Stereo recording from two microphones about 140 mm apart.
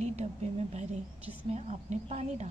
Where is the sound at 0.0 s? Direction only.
50° right (ahead or behind).